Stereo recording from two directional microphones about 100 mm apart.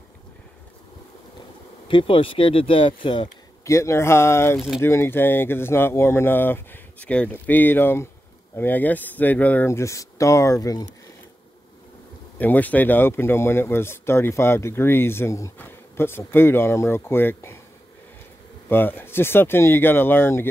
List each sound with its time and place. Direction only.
1.9 s speech: 60° left (ahead or behind)
3.6 s speech: 30° left (ahead or behind)
4.6 s speech: centre (ahead or behind)
4.8 s speech: 25° left (ahead or behind)
9.7 s speech: 30° left (ahead or behind)
12.4 s speech: 15° left (ahead or behind)
18.7 s speech: 20° left (ahead or behind)